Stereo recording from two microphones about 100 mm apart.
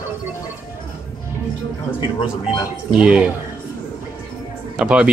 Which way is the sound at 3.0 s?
10° right (ahead or behind).